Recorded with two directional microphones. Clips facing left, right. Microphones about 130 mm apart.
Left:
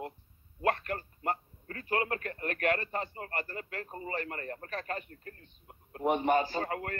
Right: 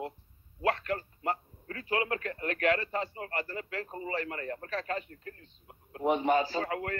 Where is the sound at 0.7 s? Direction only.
45° left (ahead or behind).